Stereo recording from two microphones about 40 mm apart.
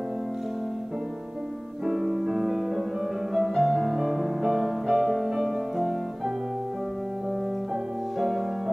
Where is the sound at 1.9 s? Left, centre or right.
Centre.